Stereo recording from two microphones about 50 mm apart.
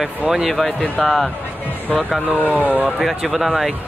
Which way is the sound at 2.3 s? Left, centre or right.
Right.